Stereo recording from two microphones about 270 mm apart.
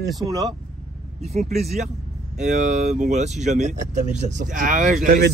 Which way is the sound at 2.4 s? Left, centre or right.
Right.